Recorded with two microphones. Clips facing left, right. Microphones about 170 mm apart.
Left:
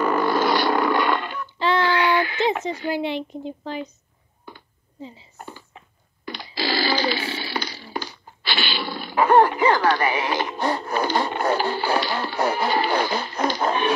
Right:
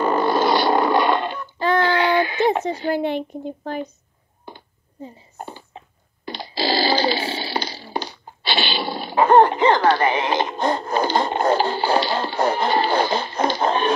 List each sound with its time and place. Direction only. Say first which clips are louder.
0.0 s a sound: right 2 dB; 30° right (ahead or behind)
1.8 s child singing: right 3 dB; 25° right (ahead or behind)
2.9 s a woman's voice: right 3 dB; 50° right (ahead or behind)
5.0 s a woman's voice: right 1 dB; 50° right (ahead or behind)
5.4 s a sound: right 5 dB; 30° right (ahead or behind)
12.6 s music: right 2 dB; 30° right (ahead or behind)